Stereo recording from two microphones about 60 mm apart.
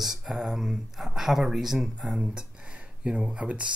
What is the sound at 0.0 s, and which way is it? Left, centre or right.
Speech, centre.